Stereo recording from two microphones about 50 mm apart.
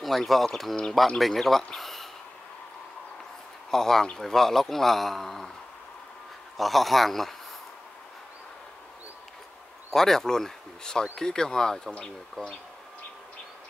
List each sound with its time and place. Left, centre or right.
0.0 s speech: centre
3.7 s a man's voice: centre
6.5 s speech: centre
9.8 s a man's voice: centre